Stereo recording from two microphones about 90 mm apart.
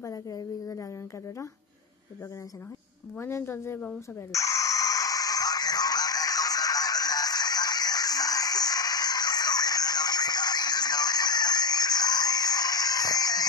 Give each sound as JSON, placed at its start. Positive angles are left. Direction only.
{"t": 0.0, "sound": "a sound", "side_deg": 40}
{"t": 3.2, "sound": "a woman's voice", "side_deg": 30}
{"t": 4.3, "sound": "music", "side_deg": 35}